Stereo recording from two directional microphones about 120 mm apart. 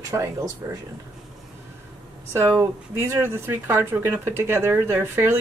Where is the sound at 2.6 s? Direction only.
20° right (ahead or behind).